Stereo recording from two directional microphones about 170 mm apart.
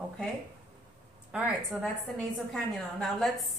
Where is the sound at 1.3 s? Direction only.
5° right (ahead or behind).